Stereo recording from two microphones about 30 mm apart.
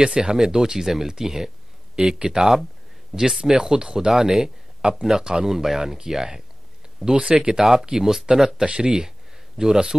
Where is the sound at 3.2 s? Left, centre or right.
Centre.